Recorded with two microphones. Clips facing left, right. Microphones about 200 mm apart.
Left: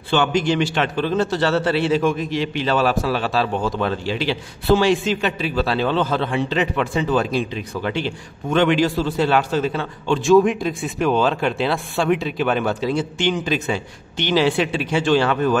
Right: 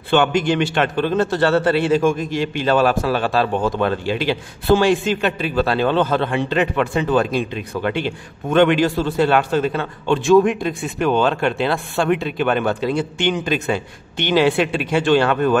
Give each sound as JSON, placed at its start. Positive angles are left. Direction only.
{"t": 0.1, "sound": "a man's voice", "side_deg": -55}
{"t": 10.3, "sound": "speech", "side_deg": 0}
{"t": 13.5, "sound": "a man's voice", "side_deg": -55}